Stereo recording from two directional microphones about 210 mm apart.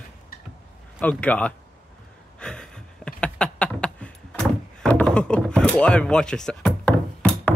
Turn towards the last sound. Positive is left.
turn(degrees=5)  # may be behind; listen again after turning